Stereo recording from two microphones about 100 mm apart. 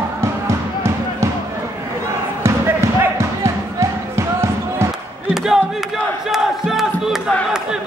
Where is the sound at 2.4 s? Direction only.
25° right (ahead or behind).